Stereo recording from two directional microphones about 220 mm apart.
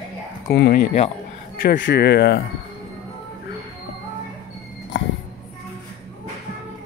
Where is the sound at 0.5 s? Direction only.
45° left (ahead or behind).